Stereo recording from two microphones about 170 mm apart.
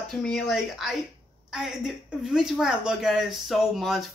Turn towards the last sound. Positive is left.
turn(degrees=0)  # may be behind; listen again after turning